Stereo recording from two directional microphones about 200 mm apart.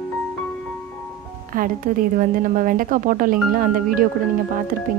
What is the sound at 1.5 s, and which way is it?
A woman's voice, 45° right (ahead or behind).